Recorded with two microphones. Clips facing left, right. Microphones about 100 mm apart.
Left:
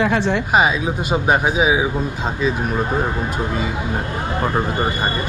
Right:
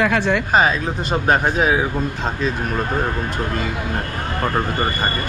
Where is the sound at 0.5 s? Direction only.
10° left (ahead or behind).